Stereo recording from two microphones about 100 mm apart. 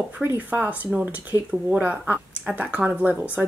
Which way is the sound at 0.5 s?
15° right (ahead or behind).